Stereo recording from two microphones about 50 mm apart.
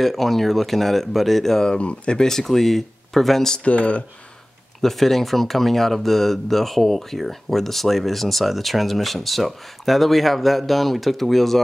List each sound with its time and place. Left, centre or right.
0.0 s speech: centre
1.8 s speech: left; by 3.5 s centre
3.5 s speech: left
4.8 s speech: centre